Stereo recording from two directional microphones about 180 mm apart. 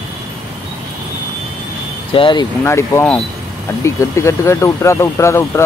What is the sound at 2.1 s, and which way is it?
Speech, 30° left (ahead or behind).